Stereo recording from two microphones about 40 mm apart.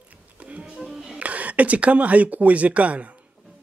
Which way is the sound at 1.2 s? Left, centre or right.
Right.